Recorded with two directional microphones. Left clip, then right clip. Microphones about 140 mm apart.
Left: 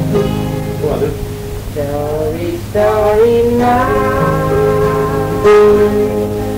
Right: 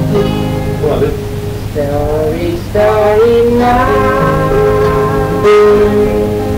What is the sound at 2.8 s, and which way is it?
Music, 40° right (ahead or behind).